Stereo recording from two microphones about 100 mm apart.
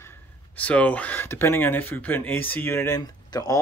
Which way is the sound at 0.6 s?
15° left (ahead or behind).